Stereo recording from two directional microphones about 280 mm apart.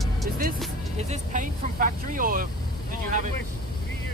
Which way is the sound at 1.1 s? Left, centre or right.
Right.